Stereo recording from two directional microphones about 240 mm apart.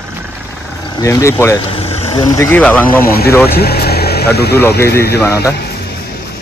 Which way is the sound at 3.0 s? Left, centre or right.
Left.